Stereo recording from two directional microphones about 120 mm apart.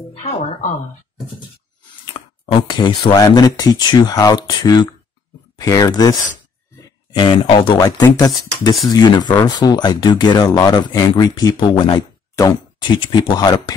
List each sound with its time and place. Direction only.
0.1 s speech: 60° left (ahead or behind); by 0.7 s 75° left (ahead or behind)
2.1 s speech: 45° left (ahead or behind)
7.8 s speech: 30° left (ahead or behind)